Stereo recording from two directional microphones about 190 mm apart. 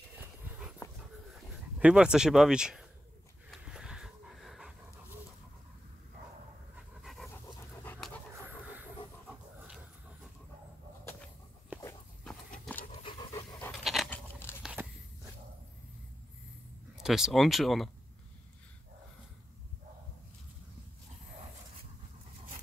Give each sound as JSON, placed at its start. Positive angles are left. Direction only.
{"t": 0.8, "sound": "dog", "side_deg": 15}
{"t": 1.8, "sound": "speech", "side_deg": -5}
{"t": 3.6, "sound": "a sound", "side_deg": -5}
{"t": 7.0, "sound": "pant", "side_deg": 0}
{"t": 7.8, "sound": "dog", "side_deg": 10}
{"t": 8.5, "sound": "wild animals", "side_deg": -10}
{"t": 11.7, "sound": "walk", "side_deg": -10}
{"t": 13.0, "sound": "pant", "side_deg": 20}
{"t": 13.8, "sound": "a sound", "side_deg": 0}
{"t": 16.9, "sound": "speech", "side_deg": -5}